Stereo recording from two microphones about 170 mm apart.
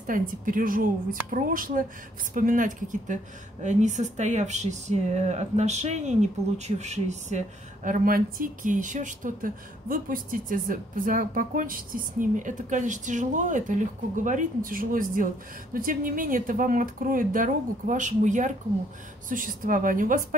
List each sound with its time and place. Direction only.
0.0 s speech: 50° right (ahead or behind)